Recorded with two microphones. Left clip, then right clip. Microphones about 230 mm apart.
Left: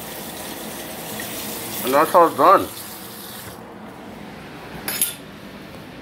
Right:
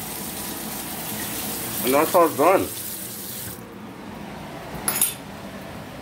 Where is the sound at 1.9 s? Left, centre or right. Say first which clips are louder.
Left 4 dB; centre.